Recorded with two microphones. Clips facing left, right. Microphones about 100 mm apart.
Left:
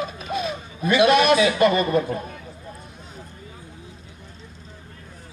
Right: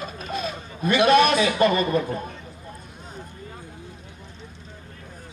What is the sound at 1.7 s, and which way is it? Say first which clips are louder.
Speech: left 2 dB; 35° left (ahead or behind).